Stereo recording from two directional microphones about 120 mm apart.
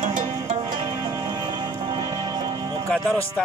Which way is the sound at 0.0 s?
80° right.